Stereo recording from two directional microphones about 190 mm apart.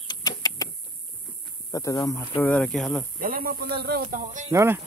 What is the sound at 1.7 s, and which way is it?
Speech, 15° left (ahead or behind).